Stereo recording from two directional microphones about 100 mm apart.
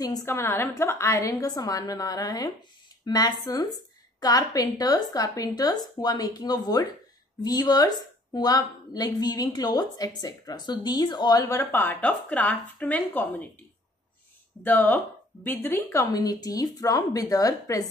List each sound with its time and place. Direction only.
0.0 s a woman's voice: 40° left (ahead or behind)
0.3 s a woman's voice: 25° left (ahead or behind); by 11.4 s 40° left (ahead or behind)
11.4 s speech: 20° left (ahead or behind)
14.6 s speech: 20° left (ahead or behind)
15.9 s a woman's voice: 35° left (ahead or behind)